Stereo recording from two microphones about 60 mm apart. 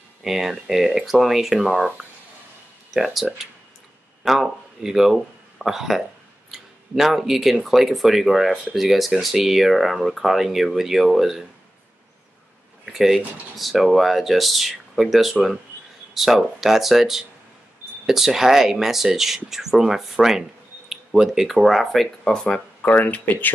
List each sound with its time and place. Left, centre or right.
0.2 s speech: centre
2.9 s speech: centre
12.8 s speech: centre
22.8 s speech: left